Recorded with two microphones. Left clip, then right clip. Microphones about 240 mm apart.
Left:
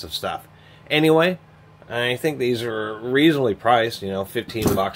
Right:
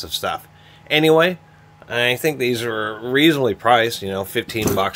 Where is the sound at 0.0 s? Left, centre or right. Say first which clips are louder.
Right 3 dB; right.